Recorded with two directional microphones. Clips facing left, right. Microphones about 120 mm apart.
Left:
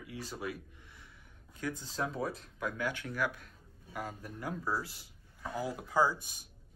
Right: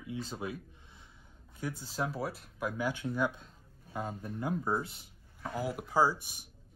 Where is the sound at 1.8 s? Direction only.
5° right (ahead or behind).